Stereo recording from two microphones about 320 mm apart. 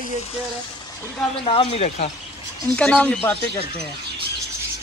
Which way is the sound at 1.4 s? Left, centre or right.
Centre.